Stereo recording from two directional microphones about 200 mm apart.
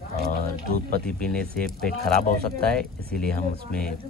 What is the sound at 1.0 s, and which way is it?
Speech, 5° left (ahead or behind).